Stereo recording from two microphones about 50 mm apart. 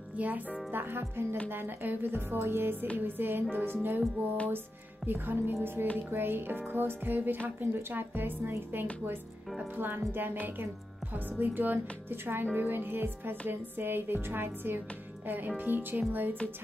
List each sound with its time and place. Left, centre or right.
0.2 s speech: right
0.7 s speech: right
5.0 s a woman's voice: right